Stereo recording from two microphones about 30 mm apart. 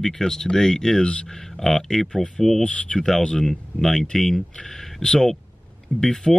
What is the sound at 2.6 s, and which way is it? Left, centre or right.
Speech, left.